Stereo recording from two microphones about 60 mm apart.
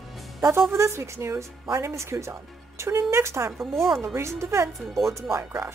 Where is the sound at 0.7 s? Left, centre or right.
Right.